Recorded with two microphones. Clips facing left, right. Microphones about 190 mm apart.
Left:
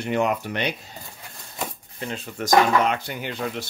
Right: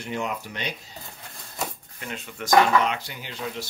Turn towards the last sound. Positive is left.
turn(degrees=55)  # may be behind; listen again after turning